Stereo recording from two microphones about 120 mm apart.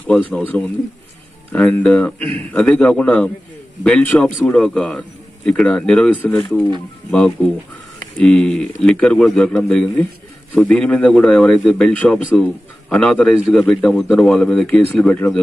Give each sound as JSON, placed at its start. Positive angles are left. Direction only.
{"t": 0.0, "sound": "a man's voice", "side_deg": 10}
{"t": 1.5, "sound": "a man's voice", "side_deg": 10}